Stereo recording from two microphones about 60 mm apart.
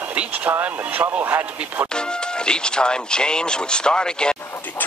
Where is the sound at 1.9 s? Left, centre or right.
Centre.